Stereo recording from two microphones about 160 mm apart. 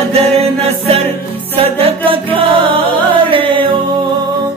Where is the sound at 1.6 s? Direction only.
40° right (ahead or behind).